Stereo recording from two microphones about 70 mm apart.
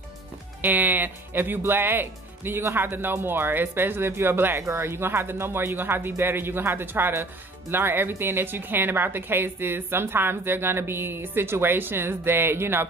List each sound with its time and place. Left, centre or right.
0.6 s speech: right